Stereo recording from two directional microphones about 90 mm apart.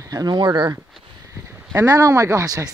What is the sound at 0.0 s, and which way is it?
Speech, 45° right (ahead or behind).